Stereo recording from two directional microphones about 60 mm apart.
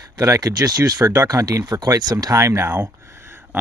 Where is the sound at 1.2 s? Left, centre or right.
Right.